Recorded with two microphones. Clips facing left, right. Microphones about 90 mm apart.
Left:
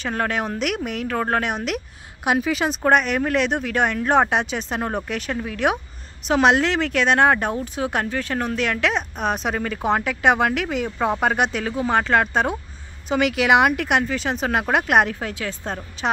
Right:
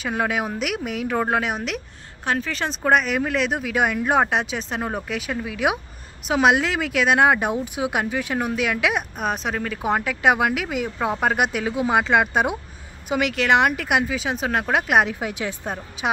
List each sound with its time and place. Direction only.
0.0 s speech: 5° right (ahead or behind)
2.2 s speech: 10° left (ahead or behind); by 12.5 s 10° right (ahead or behind)
13.1 s speech: centre (ahead or behind)
15.1 s speech: 15° right (ahead or behind)